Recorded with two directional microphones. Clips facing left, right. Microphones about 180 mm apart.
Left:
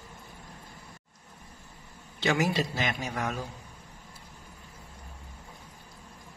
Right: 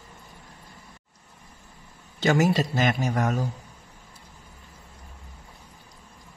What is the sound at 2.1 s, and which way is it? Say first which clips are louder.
Speech: right 5 dB; 45° right (ahead or behind).